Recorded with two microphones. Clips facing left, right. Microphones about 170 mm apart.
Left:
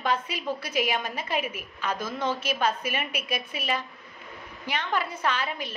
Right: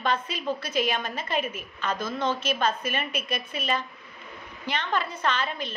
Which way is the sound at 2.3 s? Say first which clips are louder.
Right 1 dB; 10° left (ahead or behind).